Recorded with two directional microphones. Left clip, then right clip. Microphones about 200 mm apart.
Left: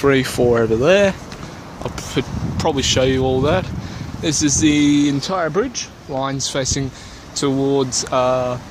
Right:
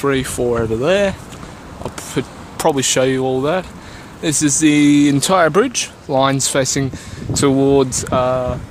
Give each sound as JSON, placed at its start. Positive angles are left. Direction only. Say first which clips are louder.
{"t": 0.0, "sound": "speech", "louder": "left 2 dB", "side_deg": 0}
{"t": 2.2, "sound": "speech", "louder": "even", "side_deg": -10}
{"t": 2.5, "sound": "speech", "louder": "right 2 dB", "side_deg": -20}
{"t": 4.2, "sound": "speech", "louder": "right 2 dB", "side_deg": -15}
{"t": 5.2, "sound": "speech", "louder": "right 6 dB", "side_deg": -40}